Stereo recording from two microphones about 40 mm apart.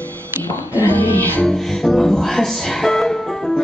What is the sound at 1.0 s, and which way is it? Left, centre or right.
Music, left.